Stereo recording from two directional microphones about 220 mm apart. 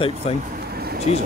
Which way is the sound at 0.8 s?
45° right (ahead or behind).